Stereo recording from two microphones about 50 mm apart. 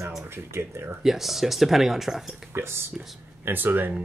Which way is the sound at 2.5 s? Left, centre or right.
Right.